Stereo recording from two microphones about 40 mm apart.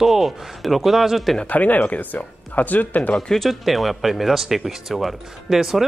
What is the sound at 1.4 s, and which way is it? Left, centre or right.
Speech, left.